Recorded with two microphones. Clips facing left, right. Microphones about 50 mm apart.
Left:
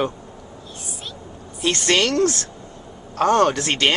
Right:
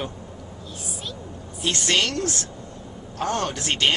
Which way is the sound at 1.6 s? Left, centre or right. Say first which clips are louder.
Left 4 dB; left.